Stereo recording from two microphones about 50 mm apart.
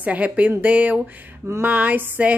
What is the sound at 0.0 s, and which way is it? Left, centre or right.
A woman's voice, right.